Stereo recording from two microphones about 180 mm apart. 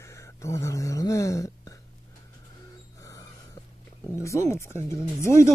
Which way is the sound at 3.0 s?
15° left (ahead or behind).